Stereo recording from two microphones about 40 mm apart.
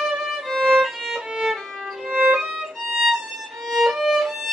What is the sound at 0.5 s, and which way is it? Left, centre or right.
Music, centre.